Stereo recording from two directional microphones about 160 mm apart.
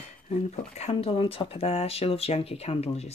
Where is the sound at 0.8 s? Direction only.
40° left (ahead or behind).